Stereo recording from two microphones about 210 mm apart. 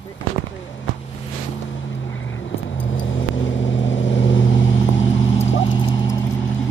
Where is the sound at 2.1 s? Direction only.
65° left (ahead or behind).